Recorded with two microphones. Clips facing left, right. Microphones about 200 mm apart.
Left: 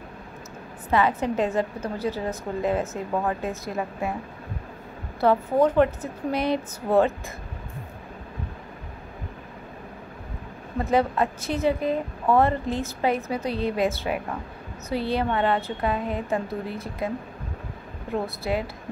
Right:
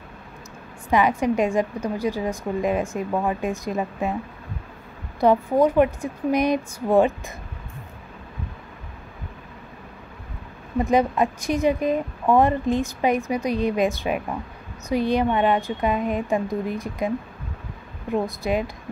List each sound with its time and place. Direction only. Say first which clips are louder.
0.8 s a woman's voice: right 3 dB; 15° right (ahead or behind)
5.2 s a woman's voice: right 2 dB; 15° right (ahead or behind)
10.8 s a woman's voice: right 3 dB; 15° right (ahead or behind)
18.1 s a woman's voice: right 3 dB; 15° right (ahead or behind)